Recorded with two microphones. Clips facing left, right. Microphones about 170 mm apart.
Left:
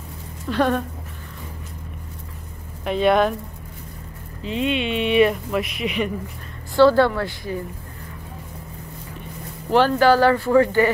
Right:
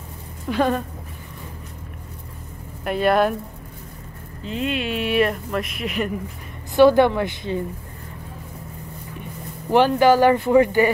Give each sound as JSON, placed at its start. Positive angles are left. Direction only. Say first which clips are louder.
{"t": 0.5, "sound": "speech", "louder": "even", "side_deg": -5}
{"t": 2.8, "sound": "speech", "louder": "left 1 dB", "side_deg": -5}
{"t": 4.4, "sound": "speech", "louder": "left 2 dB", "side_deg": 0}
{"t": 6.7, "sound": "speech", "louder": "right 1 dB", "side_deg": -20}
{"t": 9.7, "sound": "speech", "louder": "right 1 dB", "side_deg": -15}